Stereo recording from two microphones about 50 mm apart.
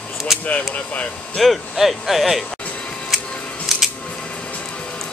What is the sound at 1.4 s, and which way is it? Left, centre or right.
Speech, centre.